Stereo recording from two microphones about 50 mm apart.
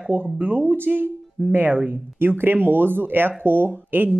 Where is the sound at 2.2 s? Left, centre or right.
Right.